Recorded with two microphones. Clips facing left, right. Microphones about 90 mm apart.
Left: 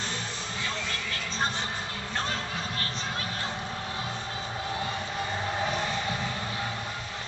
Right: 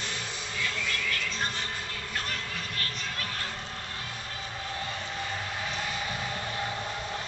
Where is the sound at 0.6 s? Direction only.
30° left (ahead or behind).